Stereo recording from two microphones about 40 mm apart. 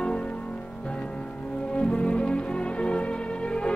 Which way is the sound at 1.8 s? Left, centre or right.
Left.